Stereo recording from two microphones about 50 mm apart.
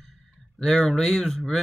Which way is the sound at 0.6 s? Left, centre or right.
Centre.